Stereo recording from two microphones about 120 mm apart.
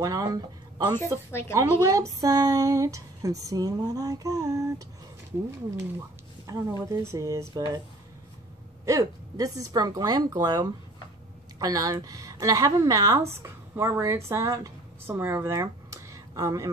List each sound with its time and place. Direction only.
0.0 s speech: 30° right (ahead or behind)
6.4 s speech: 30° right (ahead or behind)
8.8 s a woman's voice: 30° right (ahead or behind)